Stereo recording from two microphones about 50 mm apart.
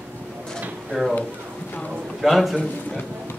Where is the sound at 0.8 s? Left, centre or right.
Centre.